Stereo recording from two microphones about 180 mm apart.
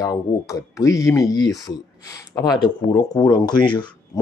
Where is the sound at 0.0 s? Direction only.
20° left (ahead or behind).